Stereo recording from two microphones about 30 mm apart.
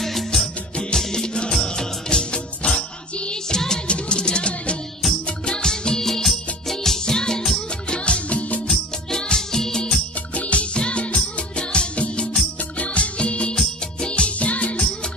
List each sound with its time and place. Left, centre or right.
0.0 s music: centre
0.9 s music: left
3.5 s music: left
3.8 s music: left
7.9 s music: left
8.6 s music: centre
10.3 s music: left
11.9 s music: left
14.4 s music: left